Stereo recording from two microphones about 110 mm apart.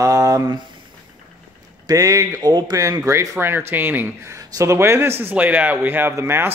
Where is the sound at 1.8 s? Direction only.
30° right (ahead or behind).